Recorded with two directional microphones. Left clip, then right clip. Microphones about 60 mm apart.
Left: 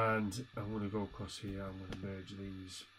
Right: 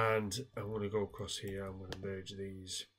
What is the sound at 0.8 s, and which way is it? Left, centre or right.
Speech, centre.